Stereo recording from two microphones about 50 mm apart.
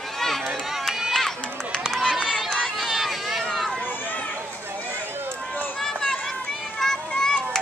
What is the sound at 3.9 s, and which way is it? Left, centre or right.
Run, left.